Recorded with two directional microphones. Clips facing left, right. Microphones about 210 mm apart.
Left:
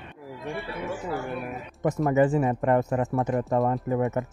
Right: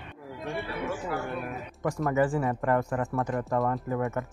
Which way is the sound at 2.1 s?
20° left (ahead or behind).